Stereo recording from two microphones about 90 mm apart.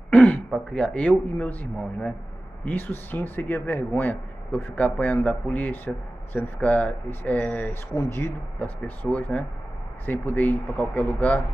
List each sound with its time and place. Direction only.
0.1 s throat clearing: 15° left (ahead or behind)
0.5 s speech: 10° left (ahead or behind)
7.9 s speech: 30° left (ahead or behind)
8.5 s speech: 15° left (ahead or behind)